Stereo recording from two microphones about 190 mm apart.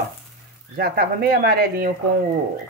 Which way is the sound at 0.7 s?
55° right (ahead or behind).